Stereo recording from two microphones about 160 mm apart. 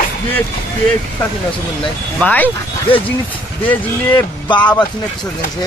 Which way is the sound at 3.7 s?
30° left (ahead or behind).